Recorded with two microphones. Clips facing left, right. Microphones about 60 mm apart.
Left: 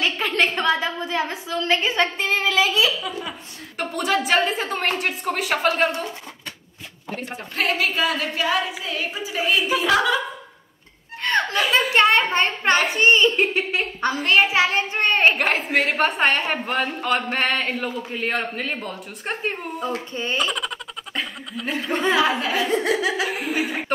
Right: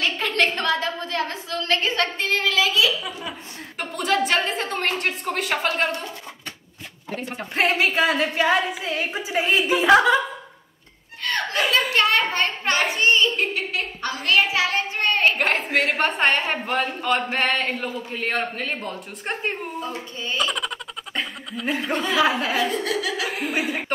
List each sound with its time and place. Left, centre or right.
0.0 s a woman's voice: centre
3.0 s a woman's voice: centre
7.5 s a woman's voice: right
11.2 s chuckle: left
11.9 s a child's voice: left
15.3 s a woman's voice: centre
20.3 s giggle: centre
21.9 s speech: left
22.2 s speech: centre
22.7 s a child's voice: left
23.3 s a woman's voice: centre